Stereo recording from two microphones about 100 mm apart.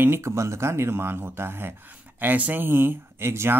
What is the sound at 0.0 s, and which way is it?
Speech, 25° right (ahead or behind).